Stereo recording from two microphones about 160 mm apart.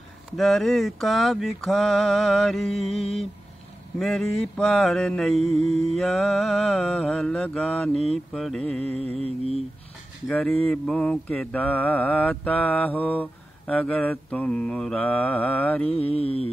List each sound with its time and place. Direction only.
0.4 s mantra: centre (ahead or behind)
9.0 s mantra: 40° right (ahead or behind)
10.2 s mantra: 5° left (ahead or behind)
16.2 s music: 40° left (ahead or behind)